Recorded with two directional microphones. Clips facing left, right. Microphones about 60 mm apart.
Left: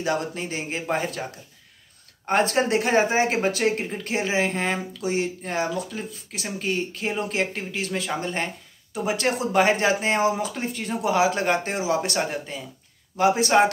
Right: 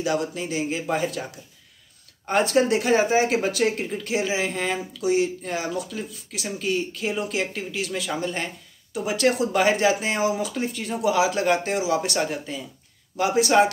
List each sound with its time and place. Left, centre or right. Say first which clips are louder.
0.0 s speech: right 1 dB; left
2.2 s speech: right 1 dB; left